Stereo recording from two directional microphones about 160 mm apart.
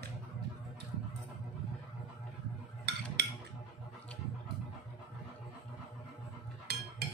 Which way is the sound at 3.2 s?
90° right.